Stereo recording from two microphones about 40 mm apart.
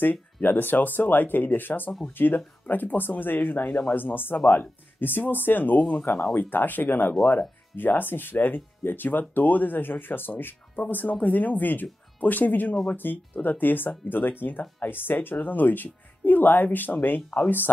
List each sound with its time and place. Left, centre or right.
0.0 s speech: left
5.8 s speech: left
6.3 s speech: left
10.9 s speech: left